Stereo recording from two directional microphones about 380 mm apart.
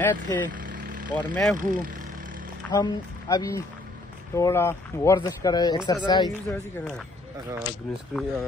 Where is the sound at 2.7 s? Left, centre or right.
Centre.